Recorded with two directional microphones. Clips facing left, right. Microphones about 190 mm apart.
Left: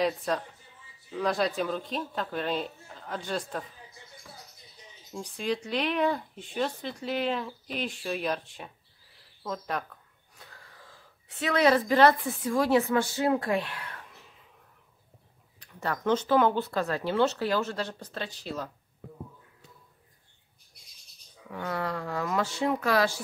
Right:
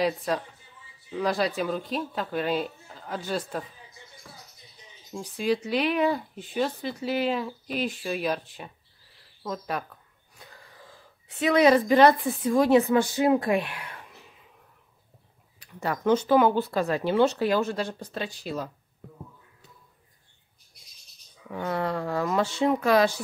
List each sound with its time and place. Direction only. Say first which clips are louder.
0.0 s speech: right 2 dB; 5° right (ahead or behind)
5.1 s speech: right 5 dB; 5° right (ahead or behind)
10.4 s wheeze: right 2 dB; 10° right (ahead or behind)
11.3 s speech: right 4 dB; 15° right (ahead or behind)
15.6 s speech: right 3 dB; 10° right (ahead or behind)
21.5 s speech: right 4 dB; 25° right (ahead or behind)